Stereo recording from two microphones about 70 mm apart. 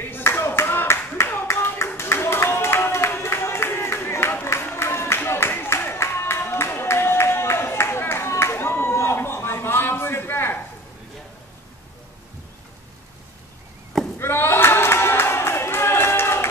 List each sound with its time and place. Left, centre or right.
0.0 s clapping: left
2.0 s a sound: left
14.1 s crowd: left